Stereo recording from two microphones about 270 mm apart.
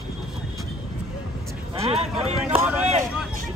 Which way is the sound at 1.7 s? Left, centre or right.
Right.